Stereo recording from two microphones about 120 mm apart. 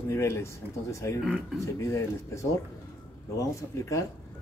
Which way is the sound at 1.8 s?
25° left (ahead or behind).